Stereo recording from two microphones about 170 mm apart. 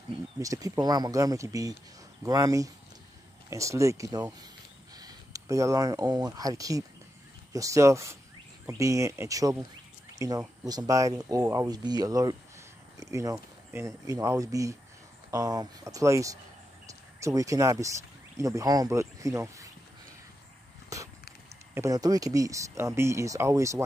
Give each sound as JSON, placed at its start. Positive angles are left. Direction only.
{"t": 0.4, "sound": "speech", "side_deg": -20}
{"t": 20.9, "sound": "a sound", "side_deg": -20}
{"t": 21.7, "sound": "speech", "side_deg": -20}